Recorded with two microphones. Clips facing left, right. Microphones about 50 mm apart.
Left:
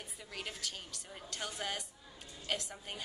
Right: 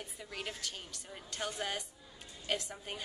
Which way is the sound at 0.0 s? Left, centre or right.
Centre.